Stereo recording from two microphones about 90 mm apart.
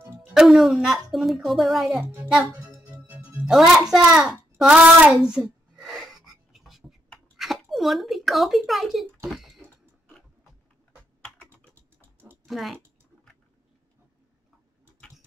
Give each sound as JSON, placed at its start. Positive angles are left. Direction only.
{"t": 0.2, "sound": "a woman's voice", "side_deg": 0}
{"t": 2.2, "sound": "speech", "side_deg": -15}
{"t": 2.8, "sound": "music", "side_deg": -15}
{"t": 3.4, "sound": "a woman's voice", "side_deg": 0}
{"t": 4.6, "sound": "child singing", "side_deg": -5}
{"t": 7.3, "sound": "speech", "side_deg": -5}
{"t": 12.4, "sound": "speech", "side_deg": 0}
{"t": 15.0, "sound": "a sound", "side_deg": 0}